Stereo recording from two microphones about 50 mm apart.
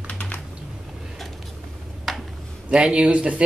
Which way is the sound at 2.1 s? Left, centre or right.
Centre.